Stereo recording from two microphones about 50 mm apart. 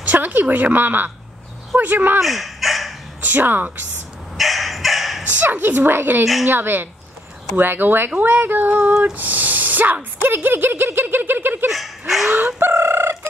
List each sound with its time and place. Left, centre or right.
0.0 s a woman's voice: right
2.2 s dog: centre
3.2 s a woman's voice: right
4.4 s dog: centre
5.2 s a woman's voice: right
11.7 s dog: centre
12.3 s a sound: right